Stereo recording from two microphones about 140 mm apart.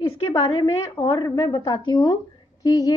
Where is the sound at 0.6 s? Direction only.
25° left (ahead or behind).